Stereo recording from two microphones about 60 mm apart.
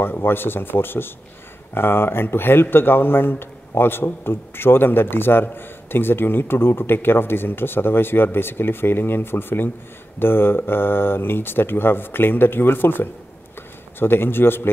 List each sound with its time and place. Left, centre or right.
0.0 s speech: left